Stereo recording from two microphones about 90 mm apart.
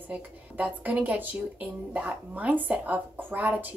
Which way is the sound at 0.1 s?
15° right (ahead or behind).